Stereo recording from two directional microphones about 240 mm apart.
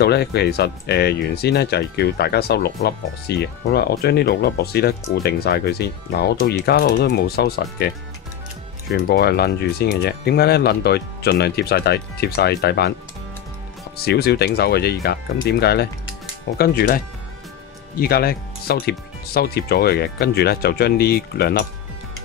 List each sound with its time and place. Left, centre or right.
0.0 s speech: left
8.9 s speech: left
13.9 s speech: left
18.0 s speech: left